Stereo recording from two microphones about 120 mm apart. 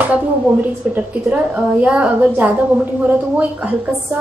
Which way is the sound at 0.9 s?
15° right (ahead or behind).